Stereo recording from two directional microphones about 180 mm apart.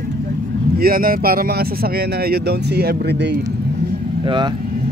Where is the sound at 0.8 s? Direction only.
55° right (ahead or behind).